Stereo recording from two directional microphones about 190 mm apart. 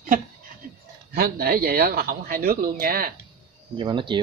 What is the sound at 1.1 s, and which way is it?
Speech, 50° right (ahead or behind).